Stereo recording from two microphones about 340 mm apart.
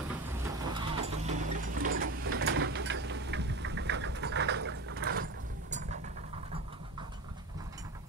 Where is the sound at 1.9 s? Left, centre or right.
Right.